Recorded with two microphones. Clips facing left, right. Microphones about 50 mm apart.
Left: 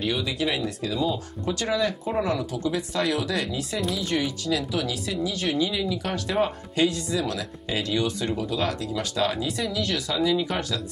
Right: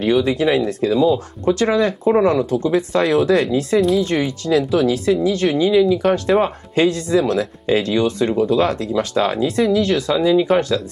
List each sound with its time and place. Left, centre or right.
0.0 s speech: right